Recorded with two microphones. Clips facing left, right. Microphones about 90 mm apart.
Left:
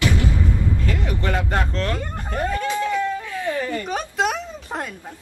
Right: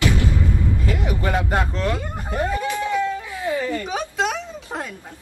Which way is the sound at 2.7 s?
15° right (ahead or behind).